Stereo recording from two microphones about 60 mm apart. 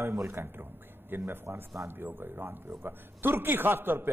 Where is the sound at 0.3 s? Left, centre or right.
Right.